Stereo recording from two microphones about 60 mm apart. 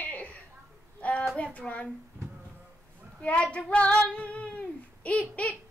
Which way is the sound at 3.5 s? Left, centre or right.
Centre.